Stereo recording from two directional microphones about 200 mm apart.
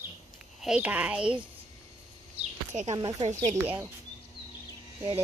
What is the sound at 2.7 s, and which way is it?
Speech, 35° right (ahead or behind).